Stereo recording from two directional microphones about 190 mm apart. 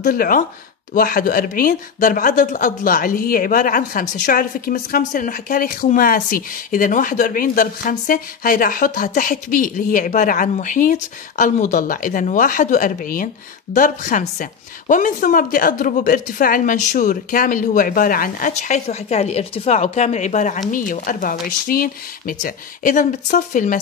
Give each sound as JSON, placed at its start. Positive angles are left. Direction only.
{"t": 0.0, "sound": "speech", "side_deg": 45}